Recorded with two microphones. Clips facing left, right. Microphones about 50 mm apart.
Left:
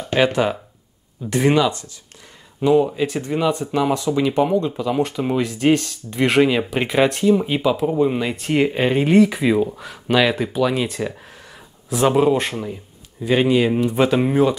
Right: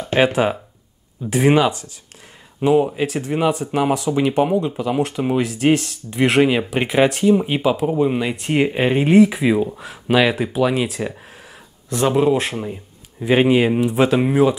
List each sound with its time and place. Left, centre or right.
0.0 s a man's voice: centre